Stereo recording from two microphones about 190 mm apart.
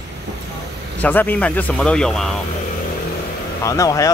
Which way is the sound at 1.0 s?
10° left (ahead or behind).